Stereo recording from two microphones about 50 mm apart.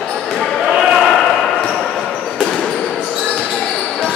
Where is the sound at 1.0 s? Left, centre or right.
Centre.